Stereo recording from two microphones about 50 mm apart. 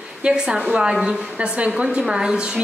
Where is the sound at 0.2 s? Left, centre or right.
Centre.